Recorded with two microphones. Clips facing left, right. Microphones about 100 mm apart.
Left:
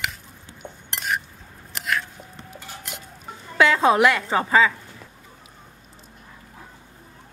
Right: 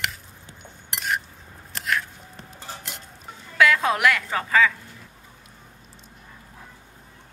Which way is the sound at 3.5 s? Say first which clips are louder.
Left 3 dB; 30° left (ahead or behind).